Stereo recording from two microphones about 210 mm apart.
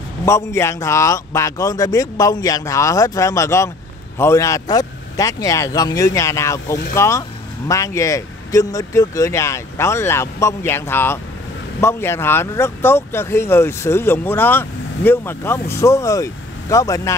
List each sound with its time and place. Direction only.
0.2 s speech: 15° left (ahead or behind)